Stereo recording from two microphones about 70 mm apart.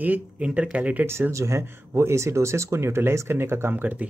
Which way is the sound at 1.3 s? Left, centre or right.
Right.